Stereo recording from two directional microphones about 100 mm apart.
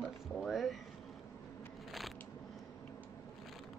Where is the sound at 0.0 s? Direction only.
Centre (ahead or behind).